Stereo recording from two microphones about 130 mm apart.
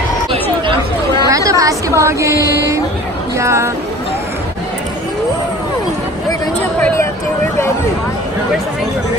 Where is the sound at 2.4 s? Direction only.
25° right (ahead or behind).